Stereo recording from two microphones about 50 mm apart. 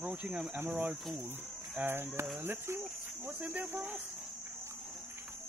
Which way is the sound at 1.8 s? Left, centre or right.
Right.